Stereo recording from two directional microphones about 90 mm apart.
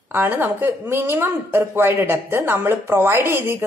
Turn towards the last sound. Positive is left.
turn(degrees=-25)  # may be behind; listen again after turning